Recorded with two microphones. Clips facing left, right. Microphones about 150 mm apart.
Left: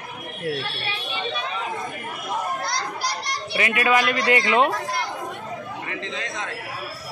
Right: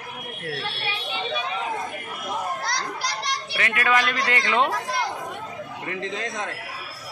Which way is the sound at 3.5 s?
10° left (ahead or behind).